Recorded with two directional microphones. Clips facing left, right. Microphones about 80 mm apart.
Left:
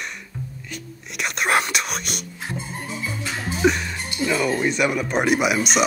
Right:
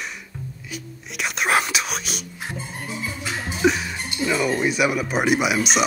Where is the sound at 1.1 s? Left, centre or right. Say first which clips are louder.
Even; centre.